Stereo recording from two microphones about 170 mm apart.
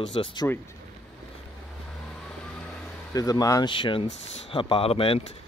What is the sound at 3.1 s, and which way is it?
Speech, 20° left (ahead or behind).